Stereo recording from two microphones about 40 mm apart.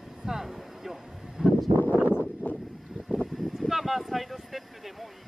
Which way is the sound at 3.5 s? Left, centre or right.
Centre.